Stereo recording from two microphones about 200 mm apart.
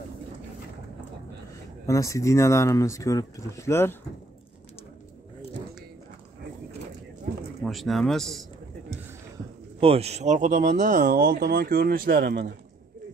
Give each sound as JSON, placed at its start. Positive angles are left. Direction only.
{"t": 1.9, "sound": "speech", "side_deg": 15}
{"t": 7.6, "sound": "speech", "side_deg": 0}
{"t": 9.8, "sound": "speech", "side_deg": -30}
{"t": 11.1, "sound": "speech", "side_deg": -55}